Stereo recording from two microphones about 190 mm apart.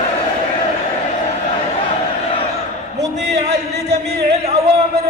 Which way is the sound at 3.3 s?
60° right (ahead or behind).